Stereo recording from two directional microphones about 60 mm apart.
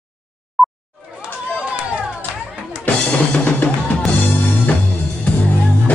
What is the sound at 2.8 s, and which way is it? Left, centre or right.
Music, left.